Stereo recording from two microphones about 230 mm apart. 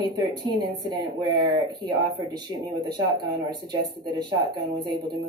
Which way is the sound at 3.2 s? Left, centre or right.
Centre.